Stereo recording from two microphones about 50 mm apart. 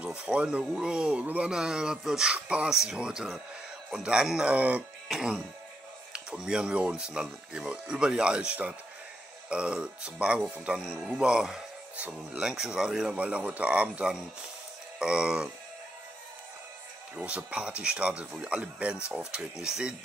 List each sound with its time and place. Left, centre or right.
0.0 s speech: right
1.2 s speech: right
1.5 s speech: centre
2.3 s speech: right
4.5 s speech: right
5.0 s speech: centre
13.1 s speech: right
15.0 s speech: centre
17.2 s speech: right